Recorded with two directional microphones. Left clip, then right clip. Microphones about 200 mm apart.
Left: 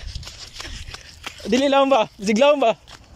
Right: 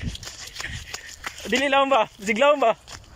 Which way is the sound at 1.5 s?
20° left (ahead or behind).